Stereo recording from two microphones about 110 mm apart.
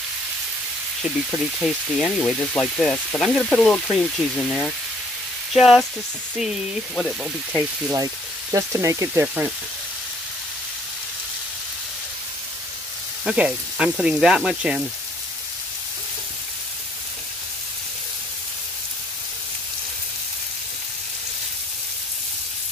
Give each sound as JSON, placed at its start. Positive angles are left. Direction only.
{"t": 1.3, "sound": "frying", "side_deg": 0}
{"t": 5.5, "sound": "speech", "side_deg": 0}
{"t": 7.9, "sound": "speech", "side_deg": -35}
{"t": 9.2, "sound": "speech", "side_deg": -15}
{"t": 13.2, "sound": "speech", "side_deg": -10}